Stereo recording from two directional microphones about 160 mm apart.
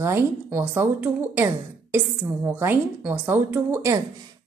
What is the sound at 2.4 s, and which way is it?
A woman's voice, 15° right (ahead or behind).